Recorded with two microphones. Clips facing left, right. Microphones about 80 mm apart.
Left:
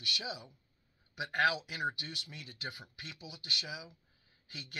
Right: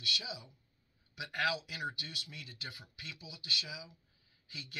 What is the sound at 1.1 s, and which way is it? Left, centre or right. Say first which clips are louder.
Speech: left 4 dB; left.